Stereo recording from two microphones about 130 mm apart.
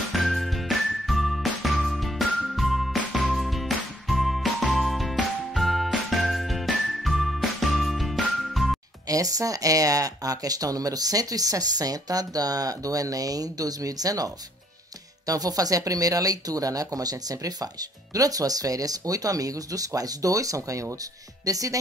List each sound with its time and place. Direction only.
0.1 s music: centre (ahead or behind)
9.0 s speech: 25° right (ahead or behind)